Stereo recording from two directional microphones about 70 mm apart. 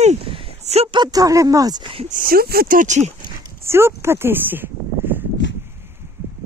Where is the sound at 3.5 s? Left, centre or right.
Right.